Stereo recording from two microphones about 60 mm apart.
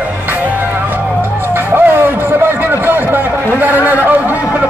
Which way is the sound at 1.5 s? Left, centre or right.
Right.